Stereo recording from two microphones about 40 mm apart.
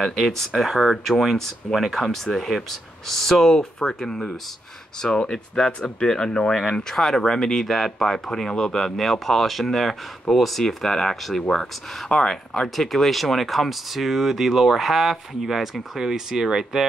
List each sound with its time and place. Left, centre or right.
0.6 s speech: centre
3.5 s speech: centre
10.6 s speech: centre